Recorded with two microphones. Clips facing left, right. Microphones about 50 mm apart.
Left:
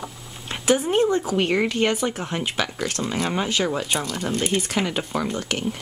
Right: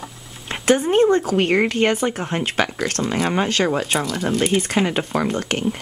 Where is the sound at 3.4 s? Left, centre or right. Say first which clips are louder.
Right 4 dB; right.